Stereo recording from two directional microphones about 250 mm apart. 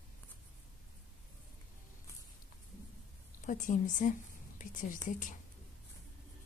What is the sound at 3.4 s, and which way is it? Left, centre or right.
A woman's voice, left.